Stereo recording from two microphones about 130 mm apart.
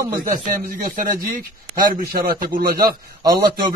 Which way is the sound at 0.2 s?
90° right.